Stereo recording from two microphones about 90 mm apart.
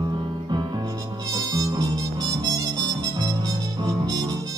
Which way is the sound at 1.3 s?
45° right (ahead or behind).